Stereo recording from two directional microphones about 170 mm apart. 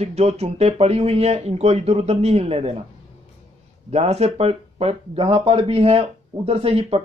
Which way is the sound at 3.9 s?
40° right (ahead or behind).